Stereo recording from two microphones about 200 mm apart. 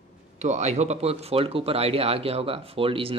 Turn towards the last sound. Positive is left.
turn(degrees=-25)  # may be behind; listen again after turning